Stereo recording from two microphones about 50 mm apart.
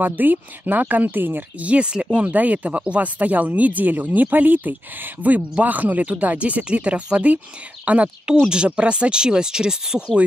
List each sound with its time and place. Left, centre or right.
0.0 s speech: right
1.6 s speech: right
2.2 s speech: right; by 10.1 s centre